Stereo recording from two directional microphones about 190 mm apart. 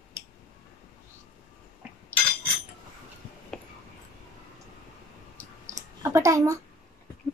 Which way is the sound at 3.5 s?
Centre (ahead or behind).